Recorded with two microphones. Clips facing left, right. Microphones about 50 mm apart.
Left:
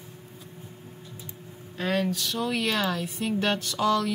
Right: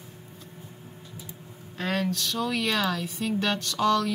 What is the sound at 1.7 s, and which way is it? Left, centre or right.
A woman's voice, centre.